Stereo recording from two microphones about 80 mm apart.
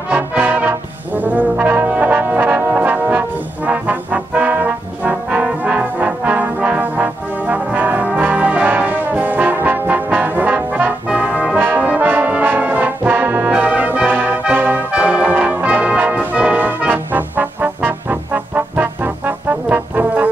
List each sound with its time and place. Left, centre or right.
0.1 s brass instrument: centre